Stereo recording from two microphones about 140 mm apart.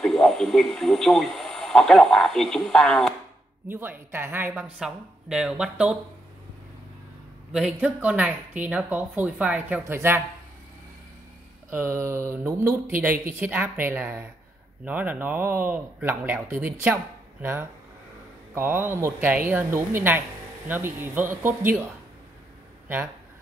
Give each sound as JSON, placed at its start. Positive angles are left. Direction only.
{"t": 0.0, "sound": "a man's voice", "side_deg": 0}
{"t": 3.6, "sound": "a woman's voice", "side_deg": -15}
{"t": 7.7, "sound": "a woman's voice", "side_deg": -10}
{"t": 11.7, "sound": "a woman's voice", "side_deg": -15}